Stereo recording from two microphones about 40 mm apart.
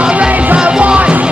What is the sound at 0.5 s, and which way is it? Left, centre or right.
Music, right.